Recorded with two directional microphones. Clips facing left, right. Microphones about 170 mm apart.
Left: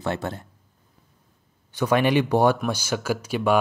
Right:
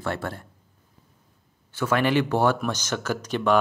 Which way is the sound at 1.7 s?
15° left (ahead or behind).